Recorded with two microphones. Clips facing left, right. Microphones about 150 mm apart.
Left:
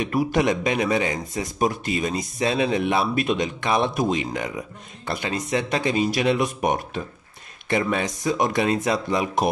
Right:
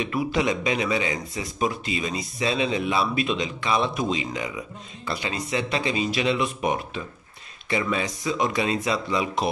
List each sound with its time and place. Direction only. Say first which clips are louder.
0.0 s a man's voice: left 3 dB; 50° left (ahead or behind)